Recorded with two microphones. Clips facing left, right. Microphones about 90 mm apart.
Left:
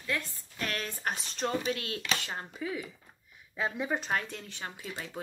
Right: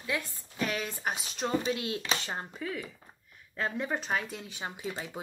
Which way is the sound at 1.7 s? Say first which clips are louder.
Right 2 dB; 20° right (ahead or behind).